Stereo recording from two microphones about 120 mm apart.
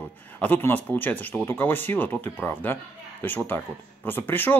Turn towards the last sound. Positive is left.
turn(degrees=15)  # may be behind; listen again after turning